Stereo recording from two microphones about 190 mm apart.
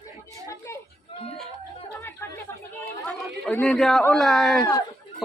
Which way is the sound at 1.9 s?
15° left (ahead or behind).